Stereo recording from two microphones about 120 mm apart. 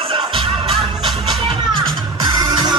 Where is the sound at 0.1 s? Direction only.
50° right (ahead or behind).